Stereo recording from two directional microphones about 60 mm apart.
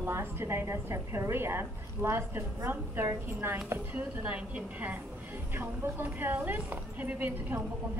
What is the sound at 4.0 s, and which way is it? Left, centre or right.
Speech, right.